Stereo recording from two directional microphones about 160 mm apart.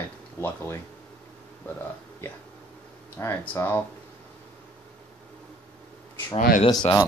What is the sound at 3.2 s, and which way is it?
Speech, 10° left (ahead or behind).